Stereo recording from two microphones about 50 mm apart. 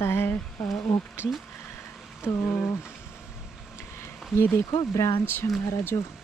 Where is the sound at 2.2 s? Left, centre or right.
Left.